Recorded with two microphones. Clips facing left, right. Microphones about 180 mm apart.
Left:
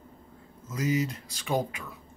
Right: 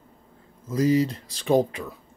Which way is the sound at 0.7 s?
35° right (ahead or behind).